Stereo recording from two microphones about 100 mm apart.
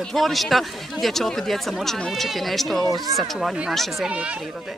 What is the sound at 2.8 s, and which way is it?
Speech, 35° right (ahead or behind).